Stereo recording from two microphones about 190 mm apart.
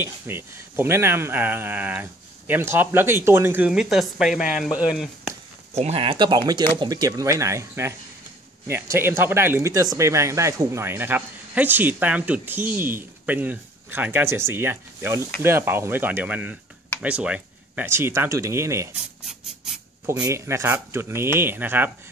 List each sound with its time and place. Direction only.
0.3 s speech: 10° right (ahead or behind)
5.7 s speech: 35° right (ahead or behind); by 18.9 s 15° right (ahead or behind)
20.1 s speech: 15° right (ahead or behind)